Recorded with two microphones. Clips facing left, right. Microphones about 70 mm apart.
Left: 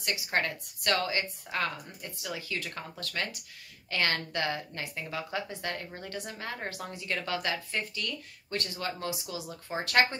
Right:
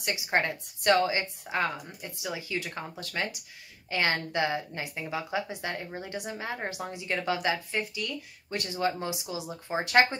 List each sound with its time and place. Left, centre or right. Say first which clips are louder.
0.0 s a woman's voice: right 3 dB; right